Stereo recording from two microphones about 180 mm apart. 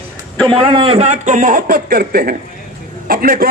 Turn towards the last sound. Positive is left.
turn(degrees=-55)  # may be behind; listen again after turning